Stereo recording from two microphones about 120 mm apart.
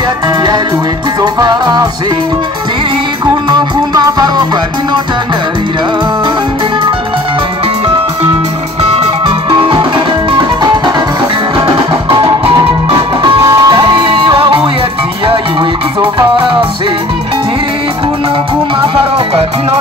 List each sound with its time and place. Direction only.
1.2 s music: 35° right (ahead or behind)
3.4 s music: 35° right (ahead or behind)
8.8 s music: 45° right (ahead or behind)
12.2 s music: 40° right (ahead or behind)
13.4 s music: 30° right (ahead or behind)